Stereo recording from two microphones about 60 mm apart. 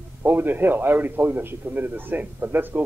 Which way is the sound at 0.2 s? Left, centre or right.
Right.